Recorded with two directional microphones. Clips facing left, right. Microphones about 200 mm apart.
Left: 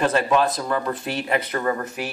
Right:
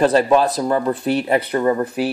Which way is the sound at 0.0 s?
35° right (ahead or behind).